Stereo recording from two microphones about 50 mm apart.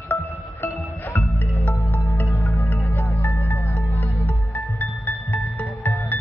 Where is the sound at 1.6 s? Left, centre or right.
Left.